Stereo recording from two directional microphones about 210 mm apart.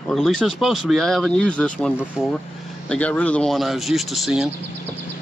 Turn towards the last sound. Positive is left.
turn(degrees=0)  # may be behind; listen again after turning